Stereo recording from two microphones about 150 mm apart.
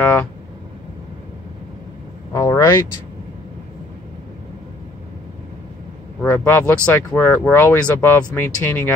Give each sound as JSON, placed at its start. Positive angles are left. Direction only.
{"t": 0.0, "sound": "speech", "side_deg": 15}
{"t": 2.3, "sound": "vehicle", "side_deg": 20}
{"t": 6.2, "sound": "speech", "side_deg": 15}